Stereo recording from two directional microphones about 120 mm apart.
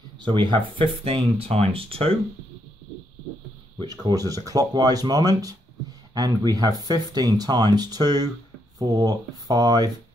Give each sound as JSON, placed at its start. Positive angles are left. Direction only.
{"t": 0.2, "sound": "speech", "side_deg": -40}
{"t": 3.7, "sound": "speech", "side_deg": -35}